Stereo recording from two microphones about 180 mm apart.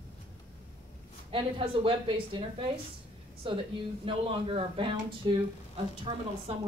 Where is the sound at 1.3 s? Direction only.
30° right (ahead or behind).